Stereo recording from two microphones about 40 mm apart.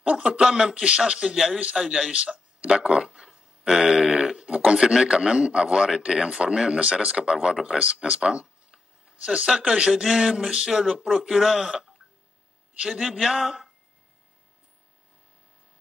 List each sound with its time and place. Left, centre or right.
0.0 s a man's voice: right
2.1 s speech: right
2.9 s a sound: centre
3.8 s a man's voice: centre
4.5 s a man's voice: right
10.0 s a sound: centre
10.5 s a man's voice: centre
12.7 s a man's voice: right
13.1 s a man's voice: centre